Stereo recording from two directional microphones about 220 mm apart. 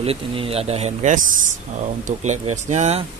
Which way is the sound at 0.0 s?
25° right (ahead or behind).